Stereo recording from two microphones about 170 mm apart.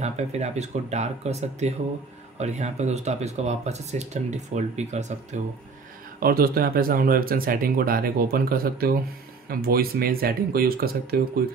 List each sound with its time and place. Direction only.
0.0 s speech: 40° right (ahead or behind)
6.1 s speech: 60° right (ahead or behind)